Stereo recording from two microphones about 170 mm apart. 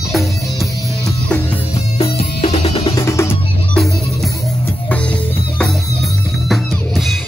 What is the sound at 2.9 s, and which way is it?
Music, 20° left (ahead or behind).